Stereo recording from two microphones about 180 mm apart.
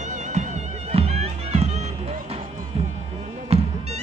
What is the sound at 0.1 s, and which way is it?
Music, 40° right (ahead or behind).